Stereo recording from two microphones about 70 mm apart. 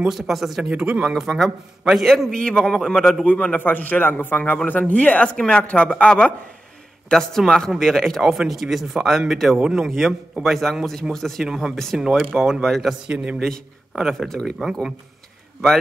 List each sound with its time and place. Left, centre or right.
0.1 s speech: centre
0.7 s speech: centre
1.1 s a man's voice: centre
3.3 s a man's voice: left; by 9.6 s centre
9.6 s speech: centre
11.4 s speech: centre
12.3 s speech: centre
13.0 s speech: centre
14.1 s speech: centre
14.6 s speech: centre